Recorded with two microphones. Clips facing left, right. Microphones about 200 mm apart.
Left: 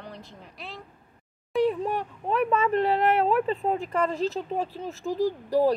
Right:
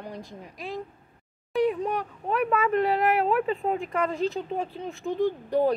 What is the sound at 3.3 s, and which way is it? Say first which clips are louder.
Speech: left 1 dB; centre (ahead or behind).